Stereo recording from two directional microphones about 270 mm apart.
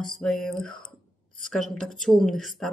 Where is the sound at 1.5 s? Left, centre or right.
Centre.